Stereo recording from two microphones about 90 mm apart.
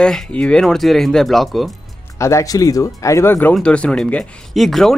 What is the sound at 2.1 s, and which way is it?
Speech, 35° left (ahead or behind).